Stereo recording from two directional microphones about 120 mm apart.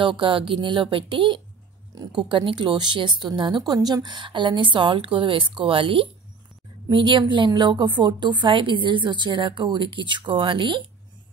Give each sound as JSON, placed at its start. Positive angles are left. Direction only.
{"t": 0.0, "sound": "a woman's voice", "side_deg": -45}